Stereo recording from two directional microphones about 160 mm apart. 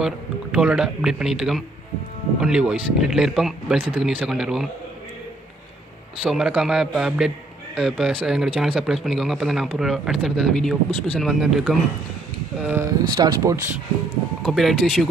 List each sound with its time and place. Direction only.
0.0 s speech: 5° right (ahead or behind)
6.2 s speech: 5° right (ahead or behind)
12.5 s speech: 15° right (ahead or behind)
14.4 s speech: centre (ahead or behind)